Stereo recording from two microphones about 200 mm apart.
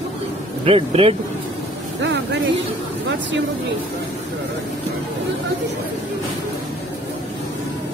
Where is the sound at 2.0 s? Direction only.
60° right (ahead or behind).